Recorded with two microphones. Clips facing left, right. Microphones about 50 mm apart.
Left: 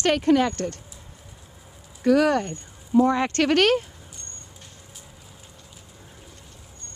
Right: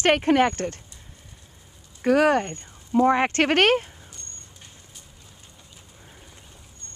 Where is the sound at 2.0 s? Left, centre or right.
Right.